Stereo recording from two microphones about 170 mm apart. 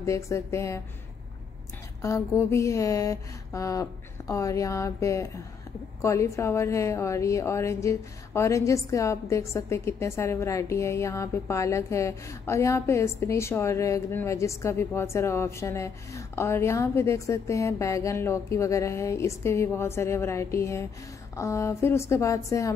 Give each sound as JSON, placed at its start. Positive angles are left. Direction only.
{"t": 0.0, "sound": "a woman's voice", "side_deg": 15}
{"t": 2.0, "sound": "a sound", "side_deg": 15}
{"t": 6.0, "sound": "a woman's voice", "side_deg": 15}